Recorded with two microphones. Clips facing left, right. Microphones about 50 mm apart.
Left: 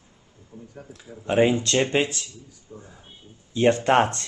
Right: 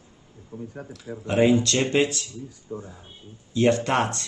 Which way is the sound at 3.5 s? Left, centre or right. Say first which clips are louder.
Left 2 dB; left.